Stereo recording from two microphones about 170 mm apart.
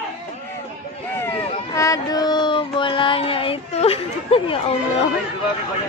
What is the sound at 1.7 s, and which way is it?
Child singing, 20° left (ahead or behind).